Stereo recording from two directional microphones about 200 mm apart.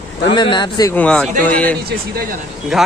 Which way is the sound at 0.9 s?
5° left (ahead or behind).